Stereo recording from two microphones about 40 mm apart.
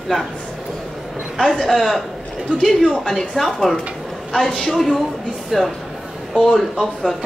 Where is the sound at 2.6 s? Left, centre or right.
Centre.